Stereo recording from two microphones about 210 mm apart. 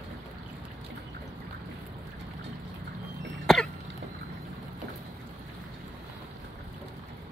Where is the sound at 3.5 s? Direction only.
Centre (ahead or behind).